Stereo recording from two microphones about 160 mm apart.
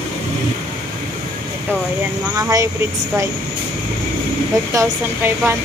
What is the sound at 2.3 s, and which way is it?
Speech, 20° right (ahead or behind).